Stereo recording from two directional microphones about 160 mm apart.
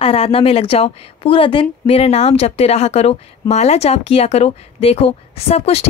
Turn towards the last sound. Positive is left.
turn(degrees=40)  # may be behind; listen again after turning